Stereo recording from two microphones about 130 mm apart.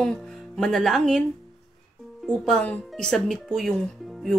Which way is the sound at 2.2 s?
5° left (ahead or behind).